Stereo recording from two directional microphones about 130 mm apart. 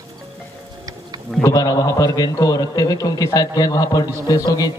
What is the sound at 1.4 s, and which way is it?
A man's voice, 30° left (ahead or behind).